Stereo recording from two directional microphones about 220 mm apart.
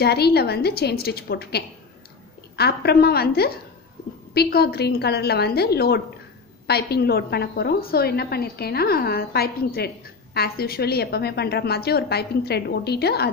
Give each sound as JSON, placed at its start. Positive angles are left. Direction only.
{"t": 0.0, "sound": "a woman's voice", "side_deg": 45}